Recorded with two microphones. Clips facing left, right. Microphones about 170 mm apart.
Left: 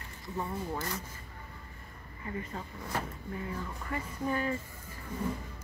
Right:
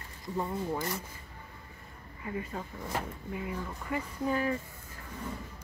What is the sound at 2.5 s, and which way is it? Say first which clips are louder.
Speech: right 1 dB; 5° right (ahead or behind).